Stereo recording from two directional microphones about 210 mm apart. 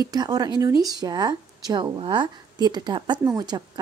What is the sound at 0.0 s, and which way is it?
Speech, 20° right (ahead or behind).